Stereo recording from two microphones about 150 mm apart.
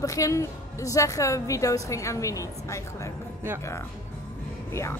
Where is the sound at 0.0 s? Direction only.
20° left (ahead or behind).